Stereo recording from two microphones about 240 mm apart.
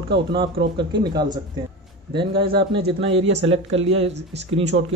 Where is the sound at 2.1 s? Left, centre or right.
Right.